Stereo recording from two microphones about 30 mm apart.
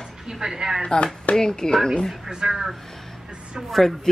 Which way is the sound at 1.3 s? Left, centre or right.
Left.